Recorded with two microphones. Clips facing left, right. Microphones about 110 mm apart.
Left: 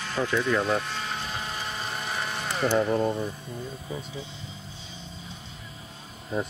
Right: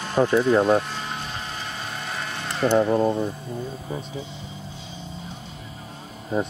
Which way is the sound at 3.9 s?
40° right (ahead or behind).